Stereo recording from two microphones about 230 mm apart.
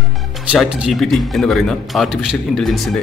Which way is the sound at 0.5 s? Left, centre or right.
Centre.